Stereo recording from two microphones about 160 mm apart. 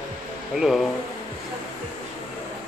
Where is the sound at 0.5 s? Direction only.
Centre (ahead or behind).